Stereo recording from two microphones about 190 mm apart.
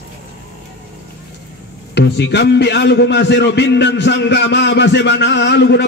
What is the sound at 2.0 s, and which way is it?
A man's voice, 65° left (ahead or behind).